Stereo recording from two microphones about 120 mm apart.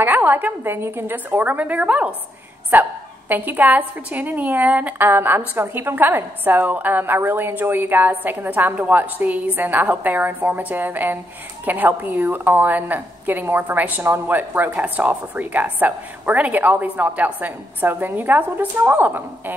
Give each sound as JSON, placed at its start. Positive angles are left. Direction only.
{"t": 0.0, "sound": "a woman's voice", "side_deg": -15}